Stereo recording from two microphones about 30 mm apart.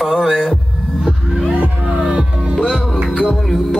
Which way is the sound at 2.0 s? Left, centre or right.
Right.